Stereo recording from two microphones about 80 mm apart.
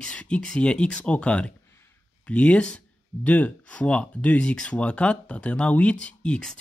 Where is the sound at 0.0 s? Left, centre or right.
Centre.